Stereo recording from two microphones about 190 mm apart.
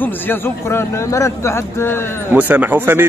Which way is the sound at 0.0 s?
10° left (ahead or behind).